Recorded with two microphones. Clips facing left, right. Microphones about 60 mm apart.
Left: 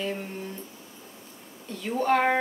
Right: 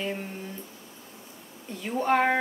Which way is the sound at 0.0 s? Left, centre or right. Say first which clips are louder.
Left 1 dB; centre.